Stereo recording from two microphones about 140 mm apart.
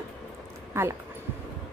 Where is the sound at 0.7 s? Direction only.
20° right (ahead or behind).